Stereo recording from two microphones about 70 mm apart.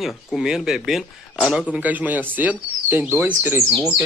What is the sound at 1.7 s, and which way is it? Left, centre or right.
Speech, right.